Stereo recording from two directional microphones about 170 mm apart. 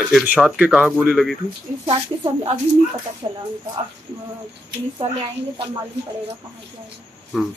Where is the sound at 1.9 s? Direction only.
30° right (ahead or behind).